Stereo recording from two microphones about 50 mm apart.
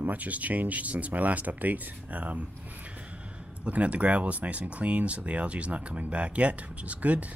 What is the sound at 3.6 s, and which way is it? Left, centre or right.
Speech, right.